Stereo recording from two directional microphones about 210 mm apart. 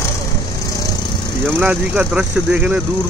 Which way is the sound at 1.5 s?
5° right (ahead or behind).